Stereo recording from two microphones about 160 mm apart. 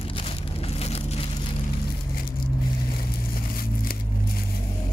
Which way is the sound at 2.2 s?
65° left (ahead or behind).